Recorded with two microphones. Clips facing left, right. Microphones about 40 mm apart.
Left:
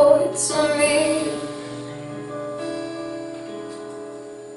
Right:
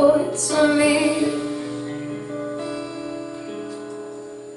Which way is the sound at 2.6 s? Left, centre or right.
Centre.